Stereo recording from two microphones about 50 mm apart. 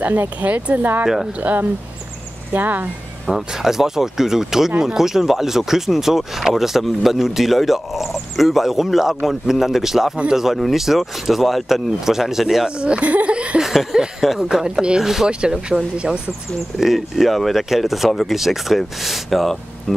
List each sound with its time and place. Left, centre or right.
0.0 s speech: right
1.0 s speech: centre
1.4 s speech: right
3.3 s speech: centre
12.6 s speech: centre
13.6 s speech: centre